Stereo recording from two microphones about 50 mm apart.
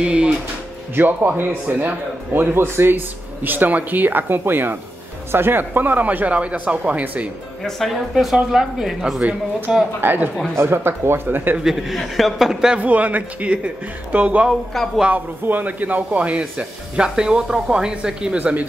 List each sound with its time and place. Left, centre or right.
0.0 s speech: right
0.9 s a man's voice: right
3.4 s speech: right
8.1 s speech: centre
9.9 s speech: right
10.5 s a man's voice: right
11.6 s speech: centre
12.7 s speech: right
14.5 s a man's voice: centre
15.4 s speech: right; by 18.4 s centre
18.4 s speech: right